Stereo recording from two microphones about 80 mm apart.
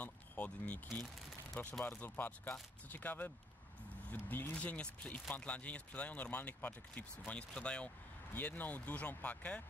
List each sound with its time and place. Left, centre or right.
0.0 s vehicle: centre
1.6 s speech: left